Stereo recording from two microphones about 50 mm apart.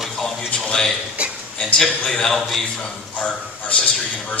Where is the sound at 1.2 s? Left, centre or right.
Right.